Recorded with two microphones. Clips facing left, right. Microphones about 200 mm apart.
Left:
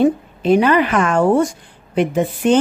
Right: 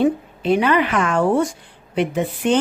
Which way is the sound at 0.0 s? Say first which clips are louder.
Left 3 dB; 45° left (ahead or behind).